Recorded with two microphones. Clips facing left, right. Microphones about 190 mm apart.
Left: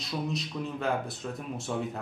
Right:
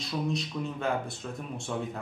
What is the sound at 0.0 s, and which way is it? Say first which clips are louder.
Speech: right 2 dB; centre (ahead or behind).